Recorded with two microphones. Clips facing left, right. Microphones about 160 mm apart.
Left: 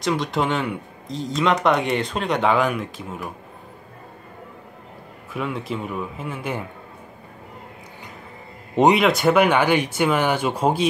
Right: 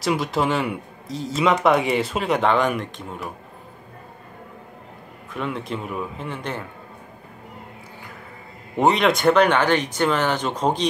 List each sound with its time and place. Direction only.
0.0 s speech: 5° right (ahead or behind)
5.3 s speech: centre (ahead or behind)
8.7 s speech: 15° left (ahead or behind)
9.0 s speech: centre (ahead or behind)